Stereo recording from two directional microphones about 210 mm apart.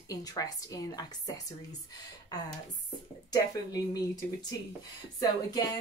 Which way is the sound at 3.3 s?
20° left (ahead or behind).